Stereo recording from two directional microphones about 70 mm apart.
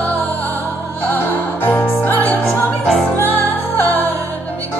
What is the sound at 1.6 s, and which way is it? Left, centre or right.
Music, left.